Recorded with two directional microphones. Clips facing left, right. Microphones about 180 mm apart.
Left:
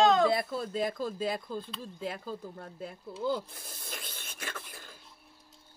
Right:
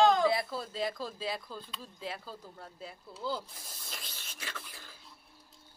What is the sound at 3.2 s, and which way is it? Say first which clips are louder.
Filing: left 5 dB; 50° left (ahead or behind).